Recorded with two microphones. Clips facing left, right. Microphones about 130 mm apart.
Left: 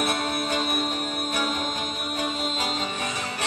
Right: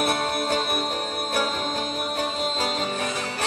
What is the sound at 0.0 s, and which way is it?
Music, 40° right (ahead or behind).